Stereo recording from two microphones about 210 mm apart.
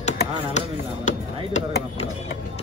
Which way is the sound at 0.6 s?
35° left (ahead or behind).